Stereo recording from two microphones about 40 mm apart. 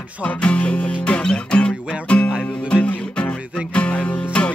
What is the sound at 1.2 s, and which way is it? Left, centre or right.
Music, centre.